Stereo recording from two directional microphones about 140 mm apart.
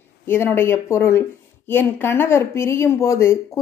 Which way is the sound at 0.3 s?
15° left (ahead or behind).